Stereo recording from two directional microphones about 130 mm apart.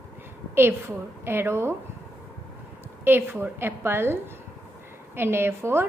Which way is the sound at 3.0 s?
15° right (ahead or behind).